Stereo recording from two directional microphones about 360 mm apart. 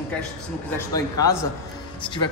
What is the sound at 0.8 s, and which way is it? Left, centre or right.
Speech, centre.